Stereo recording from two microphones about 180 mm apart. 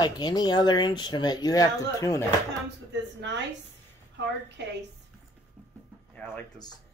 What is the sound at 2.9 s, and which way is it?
Speech, 80° right.